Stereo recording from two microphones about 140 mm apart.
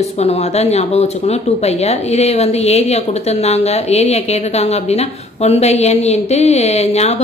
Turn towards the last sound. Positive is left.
turn(degrees=50)  # may be behind; listen again after turning